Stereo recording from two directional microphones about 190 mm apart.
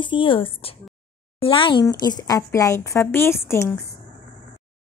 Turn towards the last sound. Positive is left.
turn(degrees=15)  # may be behind; listen again after turning